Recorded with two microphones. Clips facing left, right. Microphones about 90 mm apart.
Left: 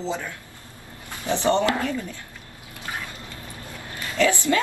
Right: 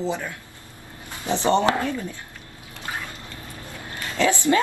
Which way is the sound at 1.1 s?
20° right (ahead or behind).